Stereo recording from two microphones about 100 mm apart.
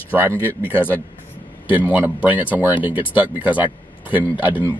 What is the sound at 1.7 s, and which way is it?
Speech, 20° right (ahead or behind).